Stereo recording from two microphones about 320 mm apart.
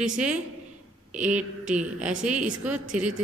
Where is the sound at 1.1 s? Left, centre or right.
Centre.